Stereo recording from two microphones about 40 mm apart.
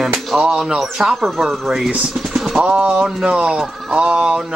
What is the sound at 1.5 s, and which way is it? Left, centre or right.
Speech, centre.